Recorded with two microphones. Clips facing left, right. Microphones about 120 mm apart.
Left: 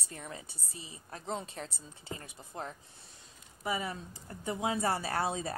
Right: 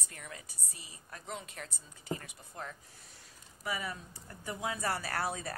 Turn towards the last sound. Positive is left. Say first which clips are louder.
# left 3 dB
turn(degrees=25)  # may be behind; listen again after turning